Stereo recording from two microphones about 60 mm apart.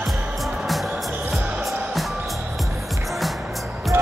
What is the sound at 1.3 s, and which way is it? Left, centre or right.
Music, centre.